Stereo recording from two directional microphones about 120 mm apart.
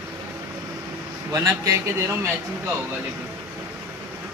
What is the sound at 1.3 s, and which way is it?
Speech, 25° right (ahead or behind).